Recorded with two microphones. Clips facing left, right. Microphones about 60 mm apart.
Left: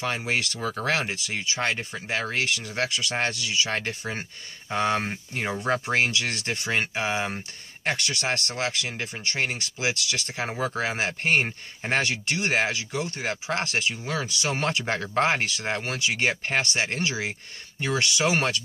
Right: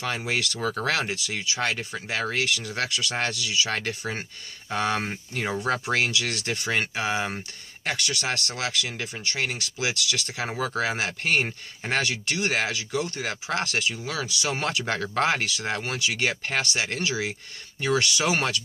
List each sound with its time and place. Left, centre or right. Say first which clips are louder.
0.0 s speech: left 1 dB; left
0.6 s speech: even; centre
3.7 s speech: even; left
17.7 s speech: right 2 dB; left